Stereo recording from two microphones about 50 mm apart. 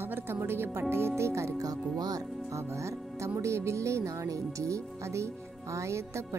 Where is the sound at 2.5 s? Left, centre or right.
Right.